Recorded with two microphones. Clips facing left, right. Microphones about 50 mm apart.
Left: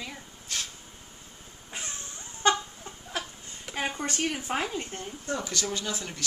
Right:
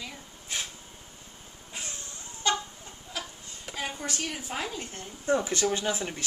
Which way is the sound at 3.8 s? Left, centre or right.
Left.